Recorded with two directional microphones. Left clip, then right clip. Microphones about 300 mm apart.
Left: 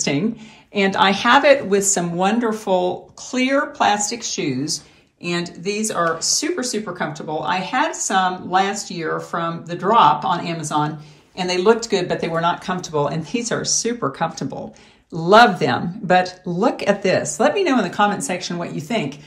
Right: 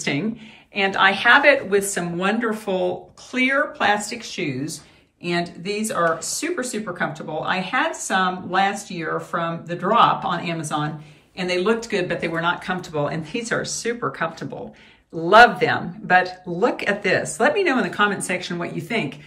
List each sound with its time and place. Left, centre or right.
0.7 s speech: centre